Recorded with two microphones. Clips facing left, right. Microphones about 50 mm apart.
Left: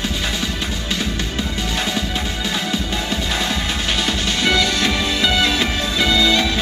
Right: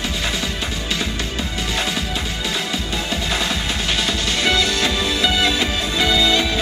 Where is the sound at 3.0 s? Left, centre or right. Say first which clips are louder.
Even; right.